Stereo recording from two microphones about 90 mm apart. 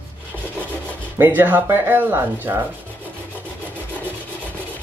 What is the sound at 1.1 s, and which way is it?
Speech, 20° right (ahead or behind).